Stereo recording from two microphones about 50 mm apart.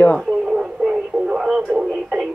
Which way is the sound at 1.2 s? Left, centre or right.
Centre.